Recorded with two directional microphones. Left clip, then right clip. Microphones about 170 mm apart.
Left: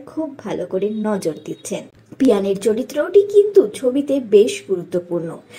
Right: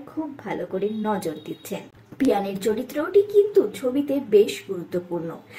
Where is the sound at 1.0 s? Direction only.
20° left (ahead or behind).